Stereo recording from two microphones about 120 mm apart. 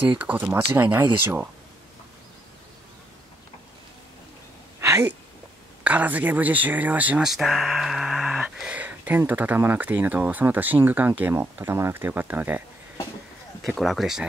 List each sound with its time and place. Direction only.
0.2 s speech: 15° right (ahead or behind)
4.7 s a sound: 25° right (ahead or behind)
5.9 s speech: 15° right (ahead or behind)
7.2 s speech: centre (ahead or behind)
13.7 s speech: centre (ahead or behind)